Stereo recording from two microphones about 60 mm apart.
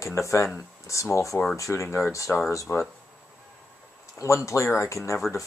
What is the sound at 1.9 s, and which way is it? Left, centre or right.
Speech, left.